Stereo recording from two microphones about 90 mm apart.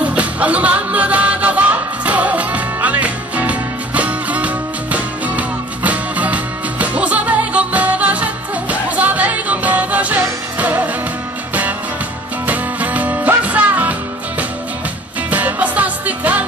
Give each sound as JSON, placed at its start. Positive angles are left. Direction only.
{"t": 0.0, "sound": "music", "side_deg": -15}
{"t": 12.4, "sound": "music", "side_deg": -15}
{"t": 15.2, "sound": "music", "side_deg": -15}